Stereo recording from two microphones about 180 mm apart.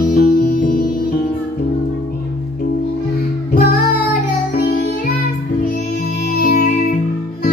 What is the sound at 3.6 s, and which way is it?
Music, 55° left (ahead or behind).